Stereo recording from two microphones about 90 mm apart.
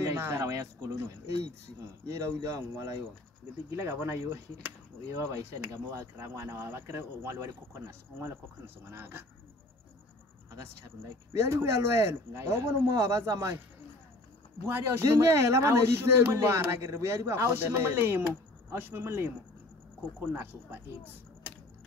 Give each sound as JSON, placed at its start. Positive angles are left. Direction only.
{"t": 0.0, "sound": "speech", "side_deg": -30}
{"t": 5.1, "sound": "speech", "side_deg": -30}
{"t": 11.3, "sound": "speech", "side_deg": -30}
{"t": 14.7, "sound": "speech", "side_deg": -30}